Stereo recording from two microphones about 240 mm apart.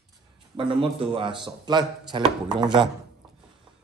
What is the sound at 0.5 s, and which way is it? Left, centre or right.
Speech, right.